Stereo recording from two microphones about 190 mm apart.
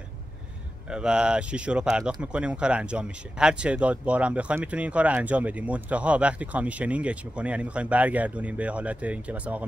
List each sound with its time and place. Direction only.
0.8 s speech: 5° right (ahead or behind)